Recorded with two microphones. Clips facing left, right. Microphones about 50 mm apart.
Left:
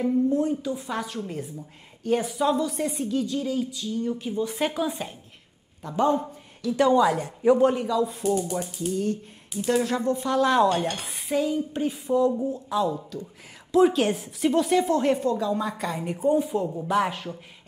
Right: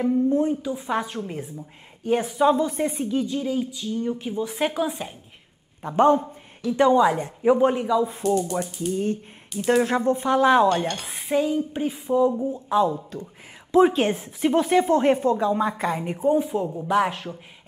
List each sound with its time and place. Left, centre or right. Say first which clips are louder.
0.0 s a woman's voice: right 2 dB; right
0.6 s a woman's voice: right 3 dB; centre
5.8 s a woman's voice: right 5 dB; right
6.6 s a woman's voice: right 2 dB; centre
12.8 s a woman's voice: right 3 dB; right
16.0 s speech: even; centre